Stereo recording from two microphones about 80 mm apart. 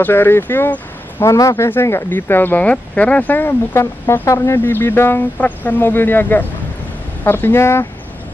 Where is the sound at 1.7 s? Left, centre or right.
Left.